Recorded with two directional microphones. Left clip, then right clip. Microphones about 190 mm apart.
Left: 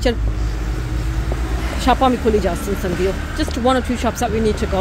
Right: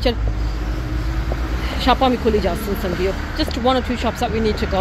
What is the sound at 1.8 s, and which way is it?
Speech, 15° left (ahead or behind).